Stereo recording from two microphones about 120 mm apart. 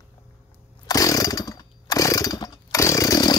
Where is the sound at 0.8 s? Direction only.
30° left (ahead or behind).